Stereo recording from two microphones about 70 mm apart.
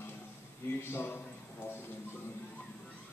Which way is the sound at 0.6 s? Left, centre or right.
Left.